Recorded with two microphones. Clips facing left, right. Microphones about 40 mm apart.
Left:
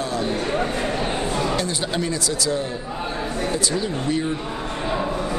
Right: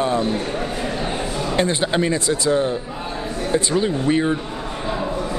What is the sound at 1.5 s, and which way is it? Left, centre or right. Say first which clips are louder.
Speech: right 4 dB; right.